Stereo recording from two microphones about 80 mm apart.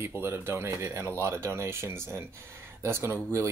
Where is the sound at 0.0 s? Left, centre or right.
Right.